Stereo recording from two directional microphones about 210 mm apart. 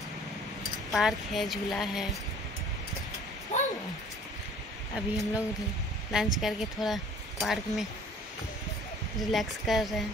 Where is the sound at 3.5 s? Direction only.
35° left (ahead or behind).